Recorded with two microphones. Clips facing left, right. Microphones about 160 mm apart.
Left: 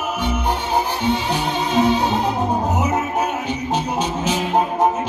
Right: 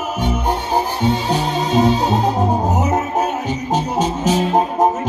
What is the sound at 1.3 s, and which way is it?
Music, 40° right (ahead or behind).